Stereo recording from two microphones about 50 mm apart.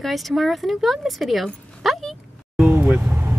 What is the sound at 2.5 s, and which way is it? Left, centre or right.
Vehicle, right.